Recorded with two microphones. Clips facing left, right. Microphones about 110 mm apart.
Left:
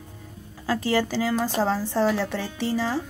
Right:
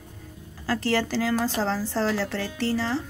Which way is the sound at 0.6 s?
10° left (ahead or behind).